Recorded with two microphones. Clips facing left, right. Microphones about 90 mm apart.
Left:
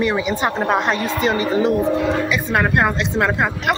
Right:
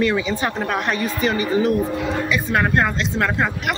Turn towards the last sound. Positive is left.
turn(degrees=20)  # may be behind; listen again after turning